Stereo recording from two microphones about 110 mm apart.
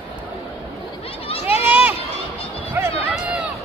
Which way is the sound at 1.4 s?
15° right (ahead or behind).